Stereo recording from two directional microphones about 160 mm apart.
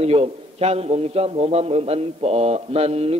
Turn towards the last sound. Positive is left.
turn(degrees=-40)  # may be behind; listen again after turning